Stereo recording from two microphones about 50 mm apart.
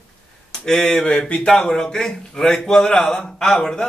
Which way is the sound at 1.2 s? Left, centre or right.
Left.